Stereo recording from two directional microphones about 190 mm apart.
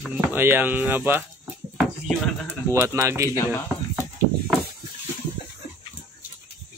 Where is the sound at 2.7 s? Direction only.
15° right (ahead or behind).